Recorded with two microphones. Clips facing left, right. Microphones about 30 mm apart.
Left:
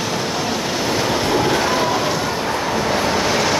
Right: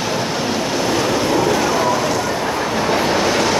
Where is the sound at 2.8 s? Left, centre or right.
Centre.